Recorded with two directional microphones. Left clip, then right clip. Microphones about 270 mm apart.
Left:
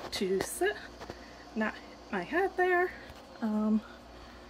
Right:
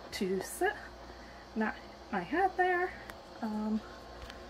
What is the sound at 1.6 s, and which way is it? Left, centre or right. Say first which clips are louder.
Speech: left 1 dB; centre.